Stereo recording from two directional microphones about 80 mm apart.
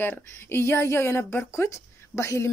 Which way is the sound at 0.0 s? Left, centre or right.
Left.